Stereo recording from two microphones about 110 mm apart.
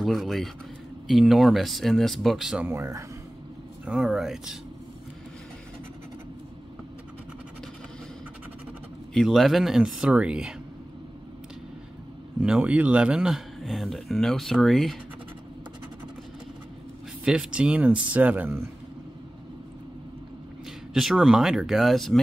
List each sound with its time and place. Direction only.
0.0 s speech: centre (ahead or behind)
2.6 s speech: 25° right (ahead or behind)
3.8 s speech: 5° right (ahead or behind)
9.1 s speech: centre (ahead or behind)
12.4 s speech: 10° right (ahead or behind)
17.2 s speech: 5° right (ahead or behind)
20.9 s speech: 5° right (ahead or behind)